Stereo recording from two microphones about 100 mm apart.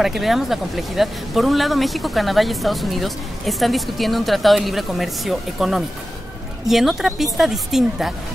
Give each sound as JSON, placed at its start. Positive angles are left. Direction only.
{"t": 0.0, "sound": "speech", "side_deg": 0}